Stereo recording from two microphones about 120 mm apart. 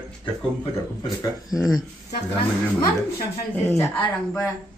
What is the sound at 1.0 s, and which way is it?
Speech, 30° left (ahead or behind).